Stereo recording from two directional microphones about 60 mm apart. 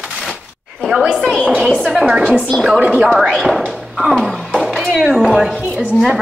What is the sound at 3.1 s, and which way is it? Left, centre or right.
Speech, centre.